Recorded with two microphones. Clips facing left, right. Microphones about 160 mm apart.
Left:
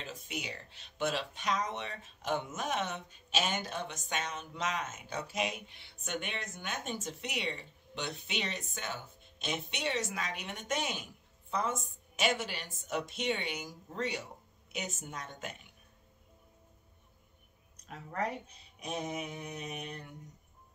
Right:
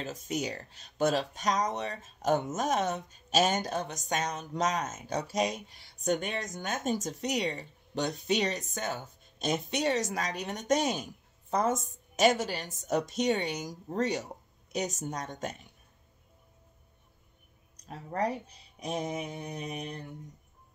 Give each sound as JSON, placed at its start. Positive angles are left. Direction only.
{"t": 0.0, "sound": "speech", "side_deg": -40}
{"t": 17.7, "sound": "speech", "side_deg": -35}